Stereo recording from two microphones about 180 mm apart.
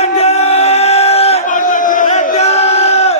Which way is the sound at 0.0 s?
35° left (ahead or behind).